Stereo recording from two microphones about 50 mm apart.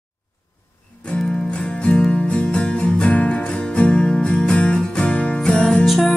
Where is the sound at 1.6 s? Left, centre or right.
Left.